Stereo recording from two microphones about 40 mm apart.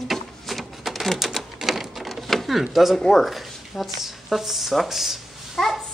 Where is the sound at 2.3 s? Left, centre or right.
Centre.